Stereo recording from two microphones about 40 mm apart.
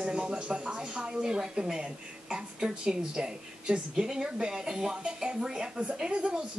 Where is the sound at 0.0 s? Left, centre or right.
Right.